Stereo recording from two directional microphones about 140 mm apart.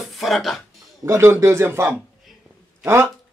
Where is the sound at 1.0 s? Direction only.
20° right (ahead or behind).